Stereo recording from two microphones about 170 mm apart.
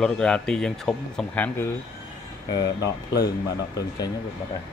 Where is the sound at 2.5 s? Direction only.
25° left (ahead or behind).